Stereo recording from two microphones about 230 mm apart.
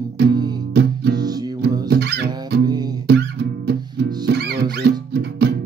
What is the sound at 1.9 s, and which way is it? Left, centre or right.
Music, right.